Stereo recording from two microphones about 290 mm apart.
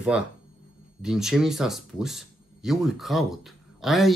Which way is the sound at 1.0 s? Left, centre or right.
Centre.